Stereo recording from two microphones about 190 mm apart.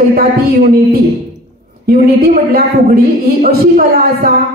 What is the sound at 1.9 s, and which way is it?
A woman's voice, 50° right (ahead or behind).